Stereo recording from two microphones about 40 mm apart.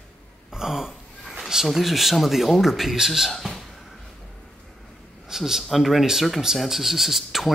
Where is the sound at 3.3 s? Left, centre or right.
Centre.